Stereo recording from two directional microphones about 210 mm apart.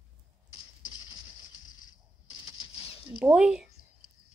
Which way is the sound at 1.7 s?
20° left (ahead or behind).